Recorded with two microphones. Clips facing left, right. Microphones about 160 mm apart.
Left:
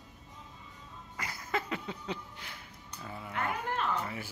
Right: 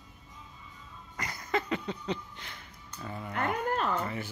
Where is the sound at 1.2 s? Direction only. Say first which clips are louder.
Right 3 dB; 5° left (ahead or behind).